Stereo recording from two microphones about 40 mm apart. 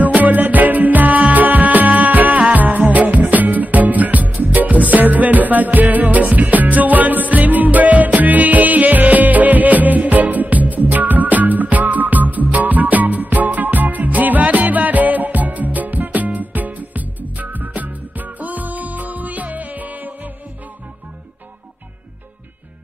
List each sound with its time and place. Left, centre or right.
0.0 s music: right